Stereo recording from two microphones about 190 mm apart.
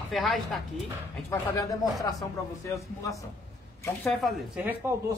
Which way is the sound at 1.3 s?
15° left (ahead or behind).